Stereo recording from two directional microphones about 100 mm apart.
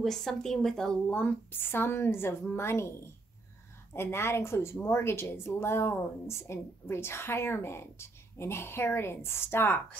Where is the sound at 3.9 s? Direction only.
25° left (ahead or behind).